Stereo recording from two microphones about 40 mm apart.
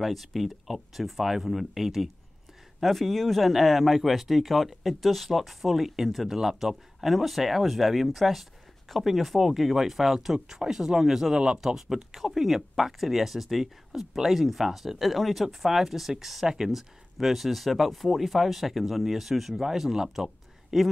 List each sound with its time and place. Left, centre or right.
0.0 s speech: centre
11.3 s speech: right
11.6 s speech: centre
15.4 s speech: centre